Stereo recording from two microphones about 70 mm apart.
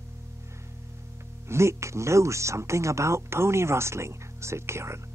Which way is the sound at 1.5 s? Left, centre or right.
Right.